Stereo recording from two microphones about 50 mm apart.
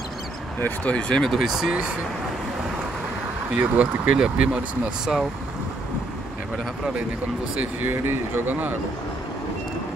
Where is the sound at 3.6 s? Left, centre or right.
Right.